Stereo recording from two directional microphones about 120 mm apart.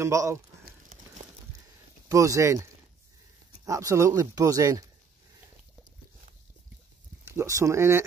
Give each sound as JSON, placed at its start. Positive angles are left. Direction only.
{"t": 0.0, "sound": "speech", "side_deg": -25}
{"t": 2.0, "sound": "speech", "side_deg": -25}
{"t": 7.2, "sound": "speech", "side_deg": -25}